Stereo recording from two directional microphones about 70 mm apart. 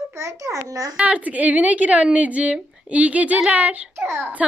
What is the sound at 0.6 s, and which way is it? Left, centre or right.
Speech, right.